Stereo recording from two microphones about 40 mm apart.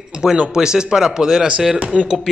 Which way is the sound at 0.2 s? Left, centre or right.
Centre.